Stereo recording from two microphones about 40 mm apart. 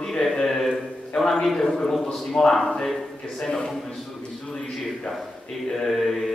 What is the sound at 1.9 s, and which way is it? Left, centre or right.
A man's voice, centre.